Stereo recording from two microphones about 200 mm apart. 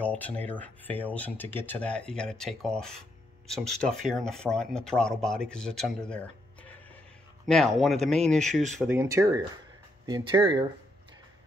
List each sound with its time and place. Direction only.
0.0 s speech: 5° left (ahead or behind)
7.4 s speech: centre (ahead or behind)
8.8 s speech: 15° right (ahead or behind)